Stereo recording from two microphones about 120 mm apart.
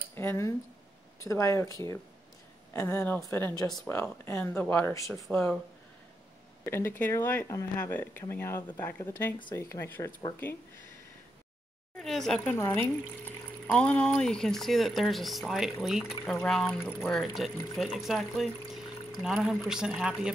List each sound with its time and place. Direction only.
0.1 s speech: 20° left (ahead or behind)
6.6 s speech: 20° left (ahead or behind)
12.0 s speech: 5° left (ahead or behind)
13.7 s speech: 10° left (ahead or behind); by 20.3 s 5° right (ahead or behind)